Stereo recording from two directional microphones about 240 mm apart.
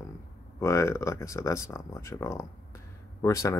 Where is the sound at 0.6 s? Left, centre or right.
Centre.